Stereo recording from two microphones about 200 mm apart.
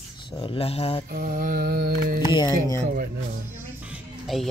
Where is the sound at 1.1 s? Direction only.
45° right (ahead or behind).